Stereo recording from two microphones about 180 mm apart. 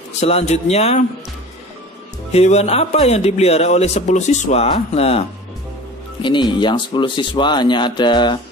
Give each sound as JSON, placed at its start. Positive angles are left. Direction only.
{"t": 0.2, "sound": "speech", "side_deg": 35}
{"t": 2.3, "sound": "speech", "side_deg": 35}
{"t": 6.2, "sound": "speech", "side_deg": 25}